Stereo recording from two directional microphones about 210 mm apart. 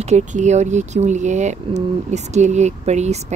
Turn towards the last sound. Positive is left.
turn(degrees=-30)  # may be behind; listen again after turning